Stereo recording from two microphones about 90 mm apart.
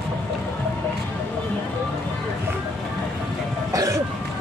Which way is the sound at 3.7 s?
40° right (ahead or behind).